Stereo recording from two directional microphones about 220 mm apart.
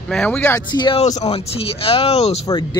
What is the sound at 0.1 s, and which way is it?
Speech, 5° left (ahead or behind).